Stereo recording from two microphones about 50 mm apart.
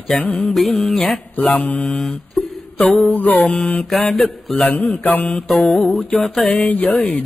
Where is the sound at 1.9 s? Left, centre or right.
Centre.